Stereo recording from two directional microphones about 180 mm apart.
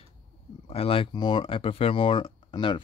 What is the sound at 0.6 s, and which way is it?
Speech, 35° left (ahead or behind).